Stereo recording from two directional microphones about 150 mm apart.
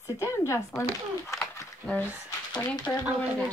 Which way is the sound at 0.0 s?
15° left (ahead or behind).